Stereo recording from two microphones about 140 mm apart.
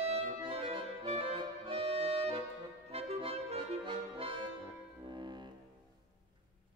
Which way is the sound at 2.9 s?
45° right (ahead or behind).